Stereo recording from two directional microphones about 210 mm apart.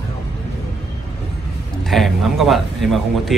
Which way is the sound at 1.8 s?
Centre (ahead or behind).